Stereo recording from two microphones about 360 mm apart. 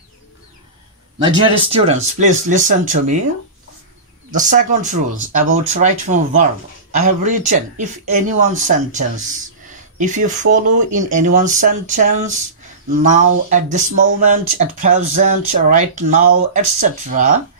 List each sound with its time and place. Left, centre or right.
1.2 s speech: centre
4.3 s speech: right